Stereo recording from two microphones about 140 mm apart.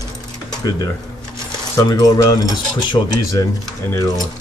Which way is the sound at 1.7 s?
30° left (ahead or behind).